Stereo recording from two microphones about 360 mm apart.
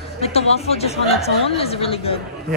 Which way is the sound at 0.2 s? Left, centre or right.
Centre.